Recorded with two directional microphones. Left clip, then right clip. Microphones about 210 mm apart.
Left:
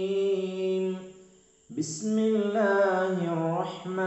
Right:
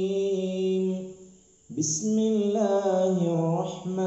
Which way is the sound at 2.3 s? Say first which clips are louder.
Even; centre (ahead or behind).